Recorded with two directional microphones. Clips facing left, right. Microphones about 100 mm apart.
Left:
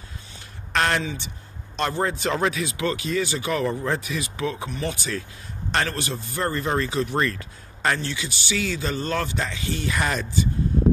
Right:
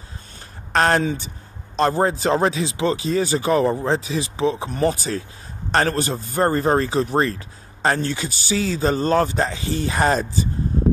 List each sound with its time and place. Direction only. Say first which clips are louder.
0.7 s speech: right 5 dB; 40° right (ahead or behind)